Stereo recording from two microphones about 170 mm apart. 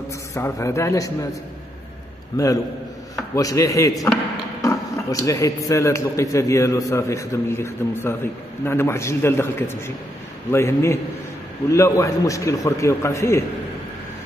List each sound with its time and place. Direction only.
0.3 s speech: 20° left (ahead or behind)
2.3 s speech: 20° left (ahead or behind)
4.6 s a sound: 20° left (ahead or behind)
5.7 s a man's voice: 20° left (ahead or behind)